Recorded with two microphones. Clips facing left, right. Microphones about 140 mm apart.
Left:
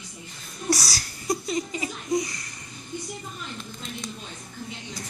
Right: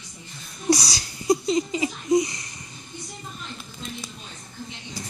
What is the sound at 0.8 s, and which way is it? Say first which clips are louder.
Wheeze: right 6 dB; 20° right (ahead or behind).